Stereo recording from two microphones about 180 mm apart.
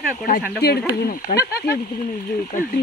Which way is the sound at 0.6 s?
60° left (ahead or behind).